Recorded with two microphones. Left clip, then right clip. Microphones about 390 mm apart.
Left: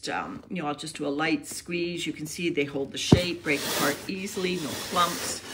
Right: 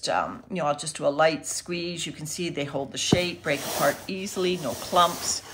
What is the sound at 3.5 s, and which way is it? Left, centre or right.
Speech, centre.